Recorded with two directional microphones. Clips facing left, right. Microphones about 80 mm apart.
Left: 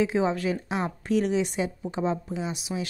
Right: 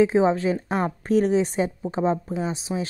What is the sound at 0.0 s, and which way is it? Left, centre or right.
Speech, right.